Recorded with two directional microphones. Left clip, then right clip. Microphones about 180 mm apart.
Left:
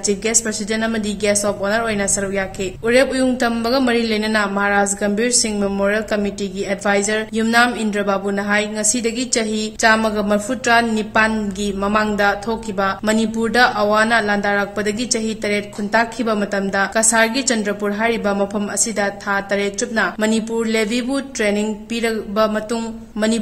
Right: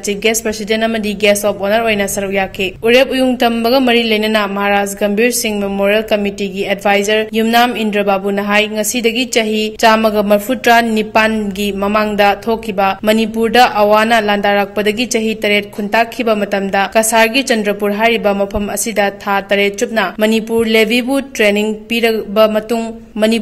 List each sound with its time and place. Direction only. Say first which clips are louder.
0.1 s speech: right 6 dB; 20° right (ahead or behind)